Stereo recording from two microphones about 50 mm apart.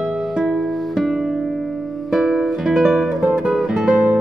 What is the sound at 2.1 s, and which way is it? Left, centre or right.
Music, centre.